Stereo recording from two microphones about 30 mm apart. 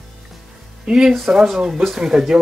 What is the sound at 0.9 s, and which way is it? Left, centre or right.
Speech, centre.